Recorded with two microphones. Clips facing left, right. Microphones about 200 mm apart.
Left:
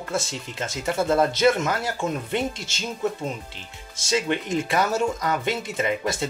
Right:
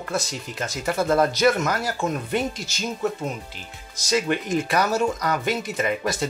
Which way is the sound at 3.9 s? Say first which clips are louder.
Right 1 dB; 25° left (ahead or behind).